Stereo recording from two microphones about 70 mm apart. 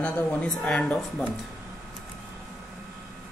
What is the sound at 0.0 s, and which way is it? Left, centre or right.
Speech, centre.